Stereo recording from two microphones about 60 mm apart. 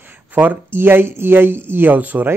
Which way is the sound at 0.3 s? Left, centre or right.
Right.